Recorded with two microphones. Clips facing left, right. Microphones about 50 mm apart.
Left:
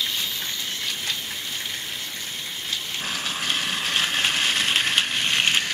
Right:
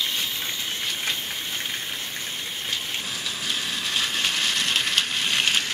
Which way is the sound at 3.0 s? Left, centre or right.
Left.